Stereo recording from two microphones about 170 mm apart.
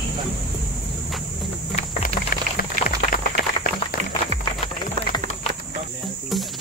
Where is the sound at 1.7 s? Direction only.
55° left (ahead or behind).